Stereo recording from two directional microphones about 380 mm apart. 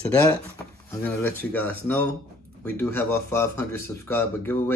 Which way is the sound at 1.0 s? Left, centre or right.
Centre.